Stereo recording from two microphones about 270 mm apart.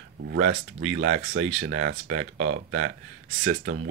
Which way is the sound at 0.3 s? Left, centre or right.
Right.